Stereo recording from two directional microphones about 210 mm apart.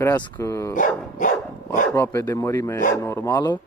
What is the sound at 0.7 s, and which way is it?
Dog, 40° left (ahead or behind).